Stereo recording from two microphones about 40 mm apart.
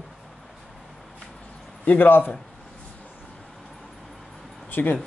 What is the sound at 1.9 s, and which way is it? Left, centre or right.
Speech, left.